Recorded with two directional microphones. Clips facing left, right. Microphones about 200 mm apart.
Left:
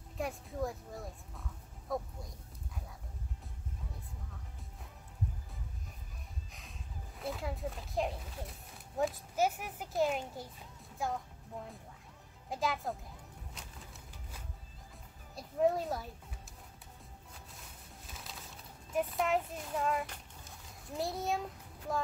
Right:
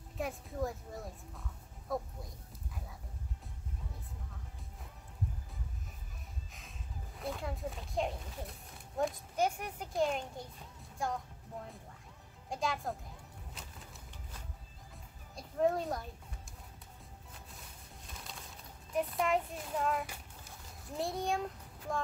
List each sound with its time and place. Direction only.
0.2 s speech: centre (ahead or behind)
7.2 s speech: centre (ahead or behind)
12.4 s speech: centre (ahead or behind)
13.6 s music: 5° right (ahead or behind)
15.3 s speech: 5° left (ahead or behind)
18.1 s a sound: centre (ahead or behind)
18.9 s a child's voice: centre (ahead or behind)